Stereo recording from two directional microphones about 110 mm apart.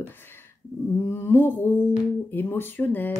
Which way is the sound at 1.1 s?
20° left (ahead or behind).